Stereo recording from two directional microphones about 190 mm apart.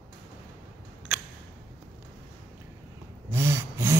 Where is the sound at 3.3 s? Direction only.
15° right (ahead or behind).